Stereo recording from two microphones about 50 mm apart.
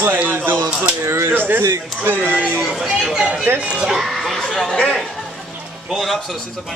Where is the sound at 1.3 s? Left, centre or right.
Right.